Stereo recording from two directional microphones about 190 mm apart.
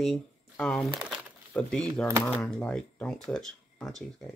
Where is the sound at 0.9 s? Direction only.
5° right (ahead or behind).